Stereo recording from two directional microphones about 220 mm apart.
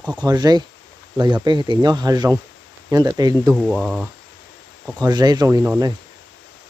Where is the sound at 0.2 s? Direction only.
20° right (ahead or behind).